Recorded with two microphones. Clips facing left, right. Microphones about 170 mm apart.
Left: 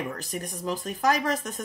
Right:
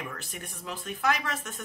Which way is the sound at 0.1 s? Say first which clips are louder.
Left 7 dB; 40° left (ahead or behind).